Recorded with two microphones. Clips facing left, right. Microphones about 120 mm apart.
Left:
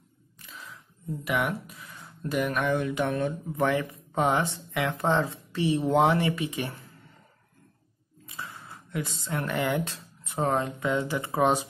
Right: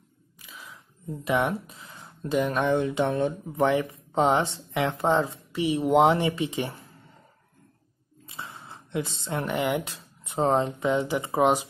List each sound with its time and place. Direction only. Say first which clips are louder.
0.4 s a sound: even; 5° right (ahead or behind)
1.2 s speech: right 4 dB; 25° right (ahead or behind)
8.3 s speech: even; 25° right (ahead or behind)